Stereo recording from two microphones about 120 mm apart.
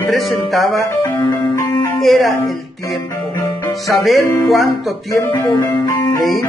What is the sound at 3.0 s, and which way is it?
Music, 25° left (ahead or behind).